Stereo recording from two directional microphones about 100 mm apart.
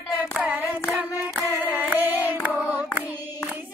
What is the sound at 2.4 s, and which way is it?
Singing, 15° right (ahead or behind).